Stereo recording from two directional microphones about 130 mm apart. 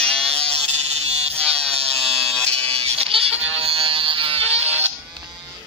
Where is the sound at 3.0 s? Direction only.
50° right (ahead or behind).